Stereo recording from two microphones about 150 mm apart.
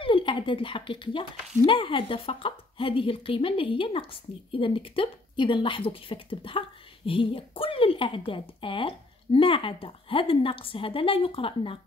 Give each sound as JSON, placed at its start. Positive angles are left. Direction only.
{"t": 0.0, "sound": "a woman's voice", "side_deg": 35}